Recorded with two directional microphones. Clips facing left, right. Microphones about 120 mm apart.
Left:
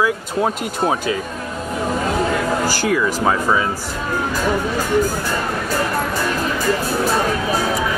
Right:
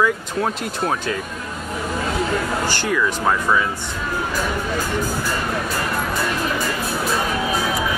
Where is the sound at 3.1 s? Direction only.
5° left (ahead or behind).